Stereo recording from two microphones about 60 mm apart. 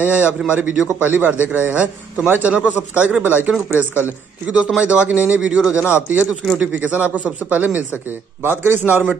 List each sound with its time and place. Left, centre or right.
0.0 s a man's voice: right